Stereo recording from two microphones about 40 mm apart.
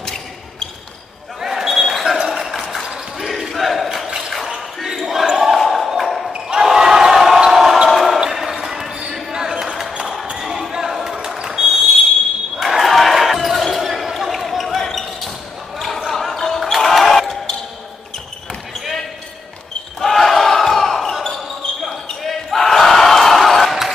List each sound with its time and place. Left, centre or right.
1.4 s basketball bounce: centre
2.1 s a sound: centre
2.4 s a sound: centre
3.2 s battle cry: centre
4.7 s basketball bounce: centre
5.6 s a sound: centre
6.6 s basketball bounce: centre
8.2 s basketball bounce: centre
11.6 s fire alarm: centre
12.5 s basketball bounce: centre
20.0 s basketball bounce: centre